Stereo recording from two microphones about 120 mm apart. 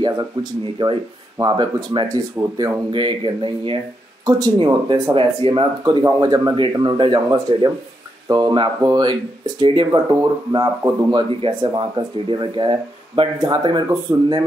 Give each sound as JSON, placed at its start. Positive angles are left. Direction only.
{"t": 0.0, "sound": "speech", "side_deg": -40}
{"t": 5.1, "sound": "speech", "side_deg": -45}
{"t": 6.8, "sound": "speech", "side_deg": -40}
{"t": 14.1, "sound": "speech", "side_deg": -20}